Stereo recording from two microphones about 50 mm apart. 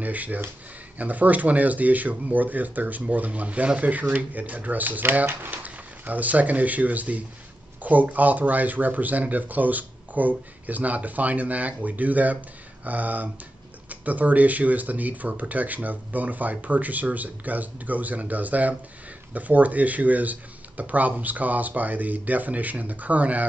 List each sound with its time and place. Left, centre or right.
0.0 s speech: right